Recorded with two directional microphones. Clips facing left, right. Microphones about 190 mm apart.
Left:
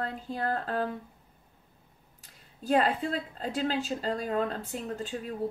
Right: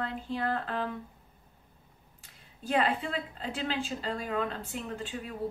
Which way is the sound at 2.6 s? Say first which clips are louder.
Left 3 dB; 40° left (ahead or behind).